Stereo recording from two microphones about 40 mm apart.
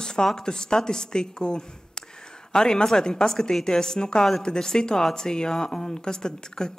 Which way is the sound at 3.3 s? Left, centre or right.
Centre.